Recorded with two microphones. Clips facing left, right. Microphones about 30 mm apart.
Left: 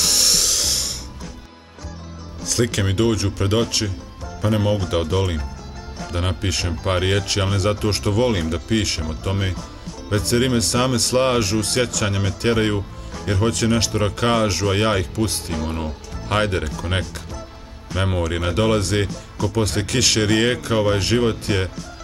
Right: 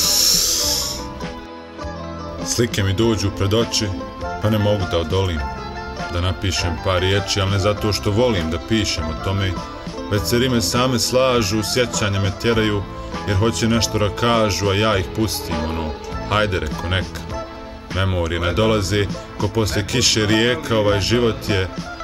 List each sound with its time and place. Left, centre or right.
0.0 s music: centre
2.4 s speech: centre
15.5 s speech: right
16.3 s speech: centre
17.9 s speech: centre